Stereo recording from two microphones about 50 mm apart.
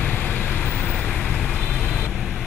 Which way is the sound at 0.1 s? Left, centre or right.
Left.